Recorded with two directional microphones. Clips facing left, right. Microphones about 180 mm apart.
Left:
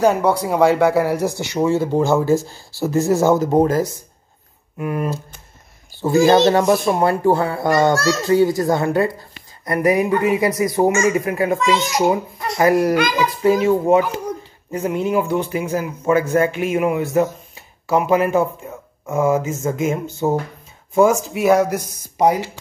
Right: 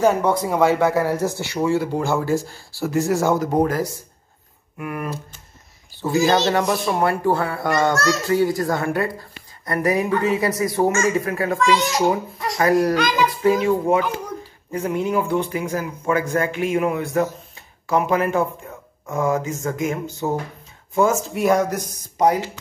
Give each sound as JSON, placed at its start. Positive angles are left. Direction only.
{"t": 0.0, "sound": "speech", "side_deg": 10}
{"t": 6.1, "sound": "speech", "side_deg": 50}
{"t": 6.5, "sound": "speech", "side_deg": 25}
{"t": 21.2, "sound": "speech", "side_deg": 5}